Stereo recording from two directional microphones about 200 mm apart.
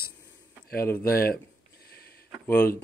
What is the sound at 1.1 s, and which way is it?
Speech, 50° left (ahead or behind).